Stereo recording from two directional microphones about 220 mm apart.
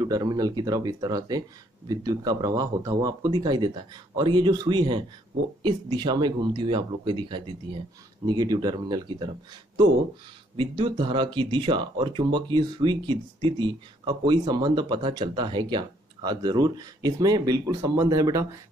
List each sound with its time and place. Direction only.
0.0 s speech: 15° right (ahead or behind)
10.5 s speech: 25° right (ahead or behind)